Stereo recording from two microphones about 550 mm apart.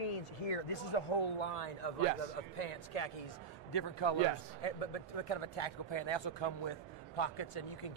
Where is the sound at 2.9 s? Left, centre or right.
Left.